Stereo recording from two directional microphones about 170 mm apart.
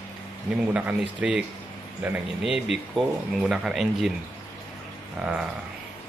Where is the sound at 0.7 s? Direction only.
5° right (ahead or behind).